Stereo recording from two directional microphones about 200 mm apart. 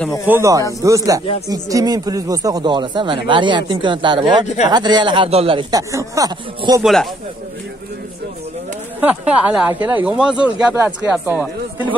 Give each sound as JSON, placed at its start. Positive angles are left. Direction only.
{"t": 0.3, "sound": "speech", "side_deg": -15}
{"t": 6.8, "sound": "speech", "side_deg": 0}
{"t": 9.0, "sound": "speech", "side_deg": -5}